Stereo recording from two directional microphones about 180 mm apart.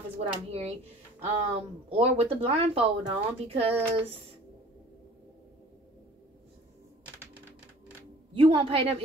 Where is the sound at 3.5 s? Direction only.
30° right (ahead or behind).